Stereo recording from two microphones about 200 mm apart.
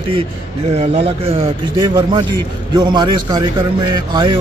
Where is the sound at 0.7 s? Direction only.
30° right (ahead or behind).